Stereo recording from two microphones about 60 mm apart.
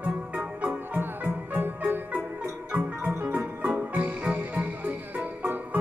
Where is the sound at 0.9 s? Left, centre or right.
Right.